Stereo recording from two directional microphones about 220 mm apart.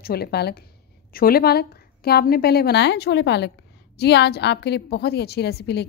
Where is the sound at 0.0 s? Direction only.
45° left (ahead or behind).